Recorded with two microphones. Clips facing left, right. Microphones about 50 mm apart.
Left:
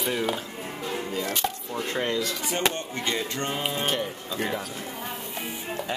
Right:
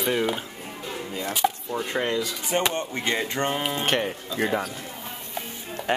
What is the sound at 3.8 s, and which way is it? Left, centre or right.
Speech, right.